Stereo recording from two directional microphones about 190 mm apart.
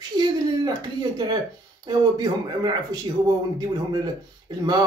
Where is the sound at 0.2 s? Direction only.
20° right (ahead or behind).